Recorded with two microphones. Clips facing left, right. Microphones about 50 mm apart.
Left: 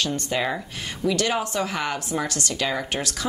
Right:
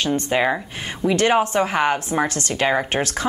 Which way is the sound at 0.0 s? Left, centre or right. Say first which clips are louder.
Right 5 dB; right.